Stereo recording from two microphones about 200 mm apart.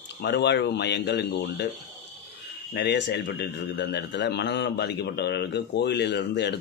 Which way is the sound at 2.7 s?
60° left (ahead or behind).